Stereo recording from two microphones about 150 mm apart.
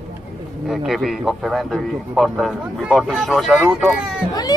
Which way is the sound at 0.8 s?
Centre (ahead or behind).